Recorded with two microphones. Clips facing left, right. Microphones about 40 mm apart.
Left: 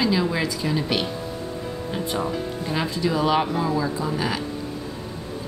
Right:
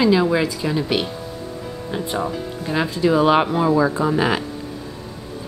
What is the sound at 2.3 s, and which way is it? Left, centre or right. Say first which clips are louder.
Speech: right 2 dB; centre.